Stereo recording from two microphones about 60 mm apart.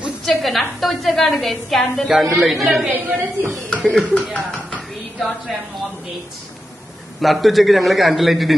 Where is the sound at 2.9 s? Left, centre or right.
Right.